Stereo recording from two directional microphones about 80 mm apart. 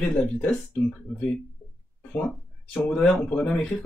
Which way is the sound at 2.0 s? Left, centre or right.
Centre.